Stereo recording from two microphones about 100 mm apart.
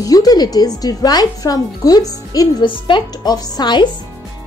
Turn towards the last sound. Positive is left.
turn(degrees=45)  # may be behind; listen again after turning